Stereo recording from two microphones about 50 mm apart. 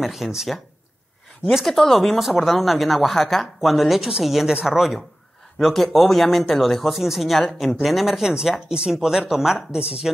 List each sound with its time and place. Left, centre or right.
0.0 s speech: centre
1.7 s speech: centre